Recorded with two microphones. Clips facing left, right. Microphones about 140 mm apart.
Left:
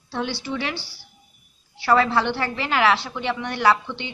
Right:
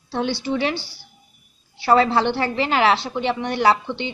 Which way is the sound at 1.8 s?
25° right (ahead or behind).